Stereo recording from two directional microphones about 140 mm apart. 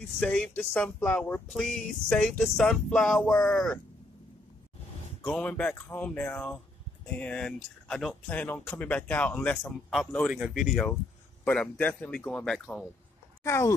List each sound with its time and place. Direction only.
0.2 s speech: 10° left (ahead or behind)
5.2 s speech: 5° left (ahead or behind)
8.3 s speech: 10° left (ahead or behind)
10.3 s speech: 5° right (ahead or behind)
13.4 s speech: 20° left (ahead or behind)